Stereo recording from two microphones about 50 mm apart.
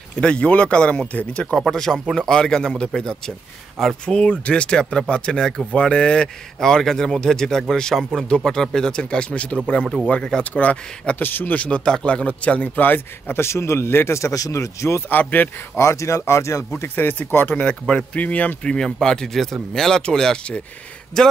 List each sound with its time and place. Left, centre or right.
0.2 s speech: left
1.6 s a man's voice: centre; by 11.2 s left
11.2 s a man's voice: left
11.5 s speech: left
12.3 s a man's voice: left
13.4 s speech: left
15.0 s a man's voice: left
15.7 s speech: left
16.9 s a man's voice: left
17.6 s a man's voice: left
18.6 s a man's voice: centre